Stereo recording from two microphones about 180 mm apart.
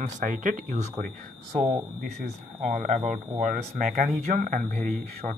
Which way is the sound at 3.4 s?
50° right (ahead or behind).